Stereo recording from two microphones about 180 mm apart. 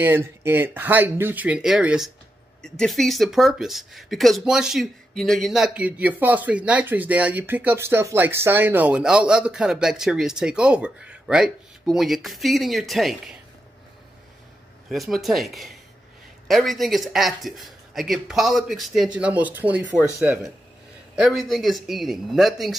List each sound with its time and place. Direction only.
0.0 s speech: 15° right (ahead or behind)
14.9 s speech: centre (ahead or behind)